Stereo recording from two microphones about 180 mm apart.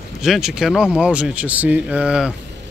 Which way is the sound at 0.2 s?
5° right (ahead or behind).